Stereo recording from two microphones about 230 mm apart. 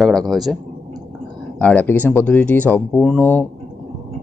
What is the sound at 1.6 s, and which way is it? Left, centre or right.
Speech, centre.